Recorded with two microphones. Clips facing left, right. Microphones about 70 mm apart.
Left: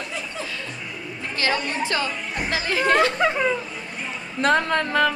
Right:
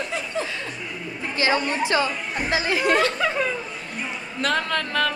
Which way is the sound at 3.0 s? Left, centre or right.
Left.